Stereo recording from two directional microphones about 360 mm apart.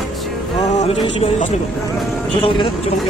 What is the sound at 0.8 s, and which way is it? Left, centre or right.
Speech, centre.